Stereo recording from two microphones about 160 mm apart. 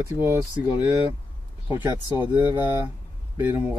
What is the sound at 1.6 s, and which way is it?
Speech, 15° right (ahead or behind).